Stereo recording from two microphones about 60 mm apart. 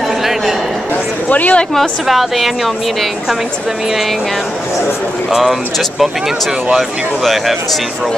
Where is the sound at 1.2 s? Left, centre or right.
Left.